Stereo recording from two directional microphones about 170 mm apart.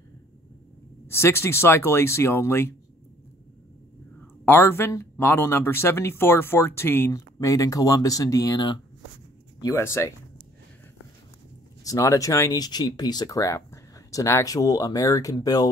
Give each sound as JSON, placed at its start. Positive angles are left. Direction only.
{"t": 1.0, "sound": "speech", "side_deg": 15}
{"t": 4.5, "sound": "speech", "side_deg": 15}
{"t": 9.6, "sound": "speech", "side_deg": 15}
{"t": 11.8, "sound": "speech", "side_deg": 20}